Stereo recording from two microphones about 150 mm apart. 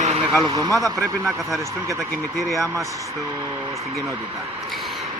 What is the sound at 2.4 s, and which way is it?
Speech, centre (ahead or behind).